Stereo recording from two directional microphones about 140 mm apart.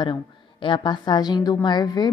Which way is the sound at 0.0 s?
35° left (ahead or behind).